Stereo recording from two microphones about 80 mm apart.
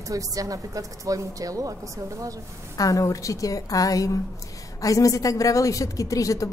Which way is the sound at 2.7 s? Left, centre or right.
Left.